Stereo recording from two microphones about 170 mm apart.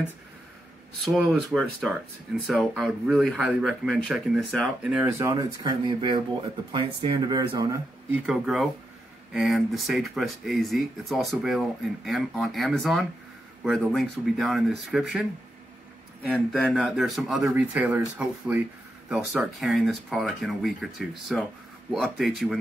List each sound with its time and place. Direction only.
1.0 s speech: centre (ahead or behind)
5.3 s speech: 25° right (ahead or behind)
8.1 s speech: centre (ahead or behind)
16.3 s speech: 5° left (ahead or behind)